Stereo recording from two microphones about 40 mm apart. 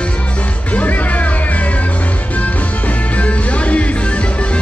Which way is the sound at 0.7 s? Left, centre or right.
Left.